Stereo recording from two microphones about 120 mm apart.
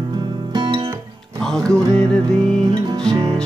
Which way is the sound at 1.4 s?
5° left (ahead or behind).